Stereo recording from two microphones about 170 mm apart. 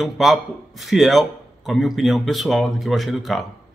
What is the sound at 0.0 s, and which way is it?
Speech, centre (ahead or behind).